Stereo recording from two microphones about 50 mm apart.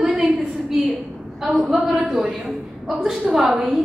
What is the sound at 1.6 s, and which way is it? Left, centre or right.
A woman's voice, centre.